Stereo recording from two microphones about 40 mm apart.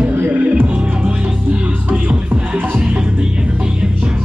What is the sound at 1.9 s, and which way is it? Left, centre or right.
Music, right.